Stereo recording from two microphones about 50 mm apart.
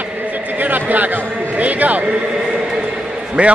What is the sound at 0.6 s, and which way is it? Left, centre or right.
Basketball bounce, right.